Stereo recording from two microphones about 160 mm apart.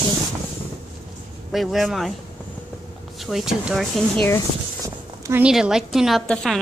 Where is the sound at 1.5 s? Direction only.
Centre (ahead or behind).